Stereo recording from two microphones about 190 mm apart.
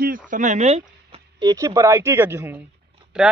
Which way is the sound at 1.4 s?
20° right (ahead or behind).